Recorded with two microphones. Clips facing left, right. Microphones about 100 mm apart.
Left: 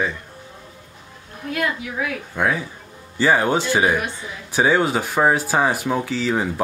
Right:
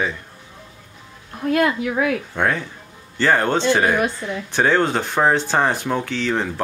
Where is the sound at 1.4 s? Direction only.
50° right (ahead or behind).